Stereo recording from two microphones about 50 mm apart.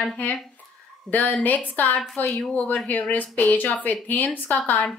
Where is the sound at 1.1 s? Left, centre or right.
Left.